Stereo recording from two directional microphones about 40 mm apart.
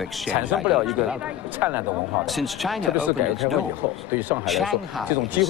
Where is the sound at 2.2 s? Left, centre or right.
Centre.